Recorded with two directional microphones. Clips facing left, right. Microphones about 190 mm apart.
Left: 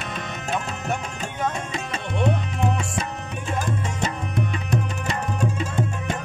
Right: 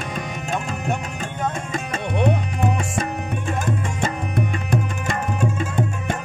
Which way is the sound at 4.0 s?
55° right (ahead or behind).